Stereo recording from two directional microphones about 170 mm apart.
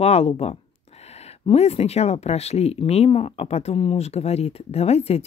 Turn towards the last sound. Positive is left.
turn(degrees=40)  # may be behind; listen again after turning